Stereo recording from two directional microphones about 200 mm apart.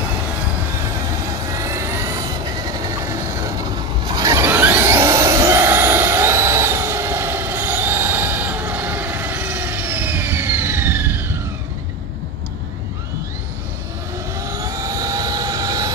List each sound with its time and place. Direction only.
1.6 s vehicle: 15° right (ahead or behind)
4.1 s a sound: 15° right (ahead or behind)
14.5 s vehicle: 15° right (ahead or behind)